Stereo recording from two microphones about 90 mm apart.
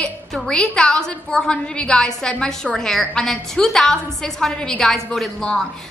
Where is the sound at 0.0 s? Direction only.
10° left (ahead or behind).